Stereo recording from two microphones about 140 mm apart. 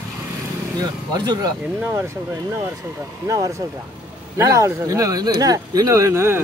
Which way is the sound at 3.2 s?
25° right (ahead or behind).